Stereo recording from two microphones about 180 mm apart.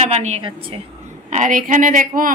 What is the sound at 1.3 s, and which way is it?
A woman's voice, 45° right (ahead or behind).